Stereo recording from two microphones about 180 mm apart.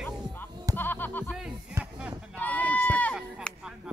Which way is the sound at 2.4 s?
10° left (ahead or behind).